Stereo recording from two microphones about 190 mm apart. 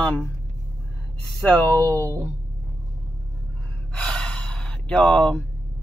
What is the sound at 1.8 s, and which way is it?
Speech, 15° right (ahead or behind).